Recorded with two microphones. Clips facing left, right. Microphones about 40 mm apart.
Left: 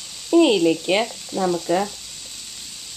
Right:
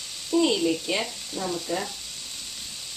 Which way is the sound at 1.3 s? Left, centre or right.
Centre.